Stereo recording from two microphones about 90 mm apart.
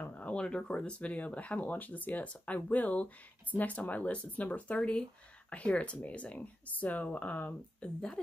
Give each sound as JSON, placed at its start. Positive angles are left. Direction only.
{"t": 0.0, "sound": "speech", "side_deg": 15}